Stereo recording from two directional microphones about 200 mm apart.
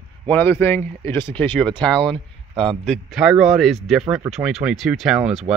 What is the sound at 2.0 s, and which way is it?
Speech, 25° right (ahead or behind).